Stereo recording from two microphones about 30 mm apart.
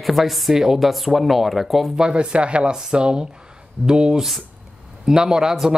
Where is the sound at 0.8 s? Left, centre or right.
Centre.